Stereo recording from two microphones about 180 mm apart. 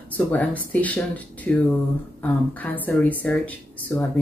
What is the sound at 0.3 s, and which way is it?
A woman's voice, 10° left (ahead or behind).